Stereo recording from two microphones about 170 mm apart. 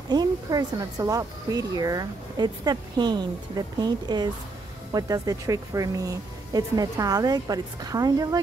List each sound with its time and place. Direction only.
0.1 s speech: 25° right (ahead or behind)